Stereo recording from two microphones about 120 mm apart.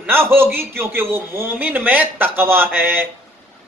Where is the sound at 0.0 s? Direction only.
20° right (ahead or behind).